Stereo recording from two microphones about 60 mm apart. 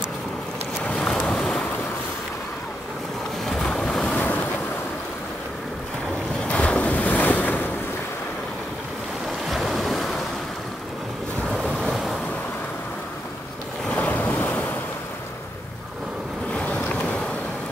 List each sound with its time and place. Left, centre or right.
0.9 s boat: centre
3.4 s boat: centre
4.1 s waves: left
6.4 s waves: centre
9.5 s waves: centre
13.9 s boat: left
16.5 s vehicle: left